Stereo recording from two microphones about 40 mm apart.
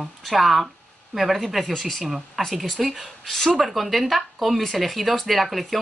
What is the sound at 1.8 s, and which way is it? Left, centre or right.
A woman's voice, centre.